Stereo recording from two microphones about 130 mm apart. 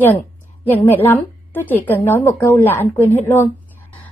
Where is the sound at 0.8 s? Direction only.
15° left (ahead or behind).